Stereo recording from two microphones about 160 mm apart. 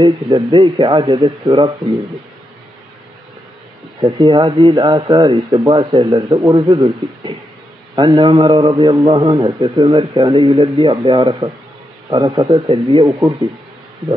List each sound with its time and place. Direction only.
0.0 s a man's voice: 30° right (ahead or behind)
4.0 s a man's voice: 30° right (ahead or behind)